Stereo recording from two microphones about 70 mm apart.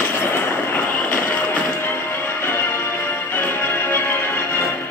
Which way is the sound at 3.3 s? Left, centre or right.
Left.